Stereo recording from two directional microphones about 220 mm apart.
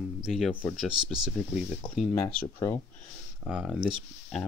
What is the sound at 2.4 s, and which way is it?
Speech, 10° left (ahead or behind).